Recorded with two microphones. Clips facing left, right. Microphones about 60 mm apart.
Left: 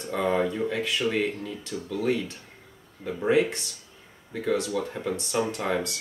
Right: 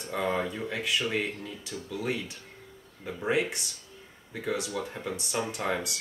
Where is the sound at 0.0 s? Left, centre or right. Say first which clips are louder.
Left 4 dB; centre.